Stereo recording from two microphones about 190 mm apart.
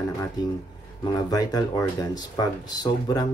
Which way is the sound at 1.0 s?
20° left (ahead or behind).